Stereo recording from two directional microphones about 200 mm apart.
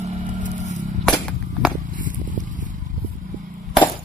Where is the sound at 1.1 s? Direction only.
5° left (ahead or behind).